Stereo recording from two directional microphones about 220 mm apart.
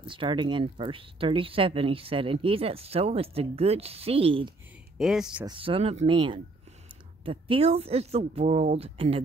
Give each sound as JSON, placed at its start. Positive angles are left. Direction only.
{"t": 0.0, "sound": "speech", "side_deg": -20}
{"t": 4.9, "sound": "speech", "side_deg": 0}
{"t": 5.4, "sound": "speech", "side_deg": -20}